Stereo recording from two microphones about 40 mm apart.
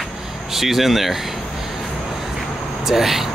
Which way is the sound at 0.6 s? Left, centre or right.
Centre.